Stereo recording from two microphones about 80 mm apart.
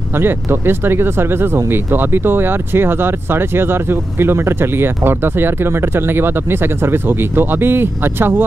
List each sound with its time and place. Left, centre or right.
0.1 s speech: right